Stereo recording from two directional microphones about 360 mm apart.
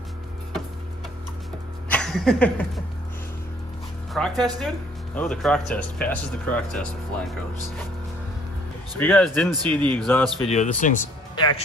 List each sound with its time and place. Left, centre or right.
1.9 s a sound: centre
4.1 s speech: centre
9.0 s speech: centre
10.5 s speech: centre